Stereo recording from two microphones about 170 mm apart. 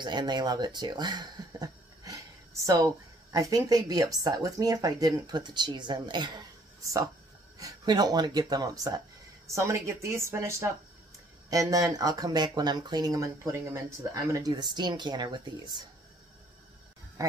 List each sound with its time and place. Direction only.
0.0 s speech: 25° right (ahead or behind)
17.2 s speech: 20° right (ahead or behind)